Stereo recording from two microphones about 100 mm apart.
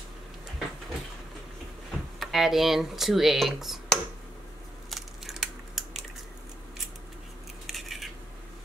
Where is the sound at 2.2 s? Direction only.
5° right (ahead or behind).